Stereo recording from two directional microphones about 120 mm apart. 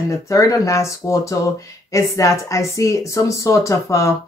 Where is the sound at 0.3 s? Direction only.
25° left (ahead or behind).